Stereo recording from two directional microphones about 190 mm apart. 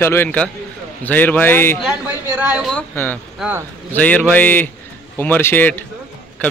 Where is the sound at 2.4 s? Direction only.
5° right (ahead or behind).